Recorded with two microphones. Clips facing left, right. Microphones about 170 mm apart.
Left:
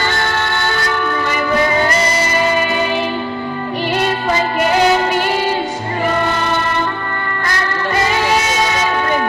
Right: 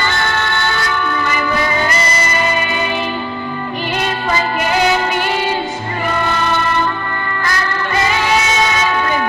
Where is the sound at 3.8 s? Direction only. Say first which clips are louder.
Left 3 dB; 35° left (ahead or behind).